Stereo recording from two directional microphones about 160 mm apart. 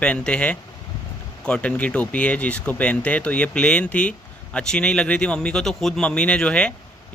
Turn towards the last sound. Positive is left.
turn(degrees=5)  # may be behind; listen again after turning